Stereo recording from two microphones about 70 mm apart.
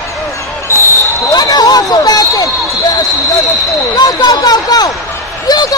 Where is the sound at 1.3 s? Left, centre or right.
Left.